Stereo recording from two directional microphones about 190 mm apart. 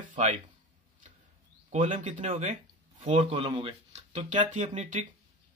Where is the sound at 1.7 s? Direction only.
40° right (ahead or behind).